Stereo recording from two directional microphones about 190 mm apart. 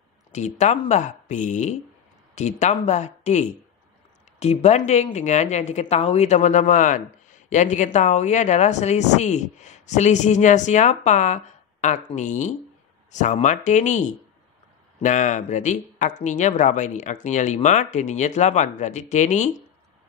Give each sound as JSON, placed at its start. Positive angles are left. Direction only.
{"t": 0.3, "sound": "speech", "side_deg": 40}